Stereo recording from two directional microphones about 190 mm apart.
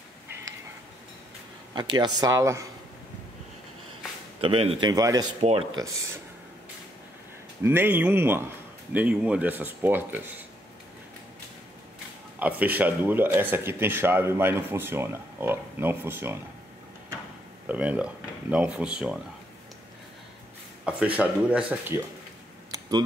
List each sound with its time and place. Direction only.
1.8 s a man's voice: 25° right (ahead or behind)
4.4 s a man's voice: 30° right (ahead or behind)
5.4 s speech: 30° right (ahead or behind)
7.6 s speech: 10° right (ahead or behind)
12.4 s speech: 10° right (ahead or behind)
17.6 s speech: 10° right (ahead or behind)
20.8 s speech: 5° right (ahead or behind)
22.7 s a sound: 20° right (ahead or behind)